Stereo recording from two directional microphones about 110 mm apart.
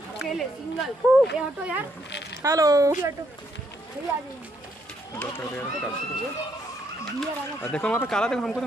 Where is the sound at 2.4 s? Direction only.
30° right (ahead or behind).